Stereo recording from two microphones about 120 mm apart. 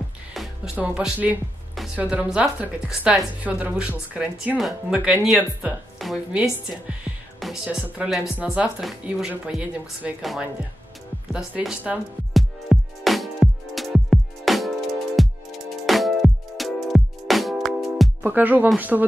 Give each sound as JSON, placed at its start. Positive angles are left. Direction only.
{"t": 0.7, "sound": "a woman's voice", "side_deg": -10}
{"t": 12.4, "sound": "music", "side_deg": 0}
{"t": 18.2, "sound": "a woman's voice", "side_deg": -15}